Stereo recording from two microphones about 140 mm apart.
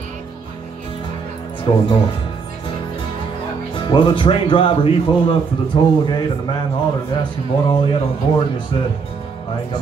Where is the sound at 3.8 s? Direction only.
35° left (ahead or behind).